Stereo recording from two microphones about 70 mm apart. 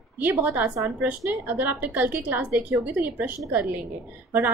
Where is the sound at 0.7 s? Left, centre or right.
Right.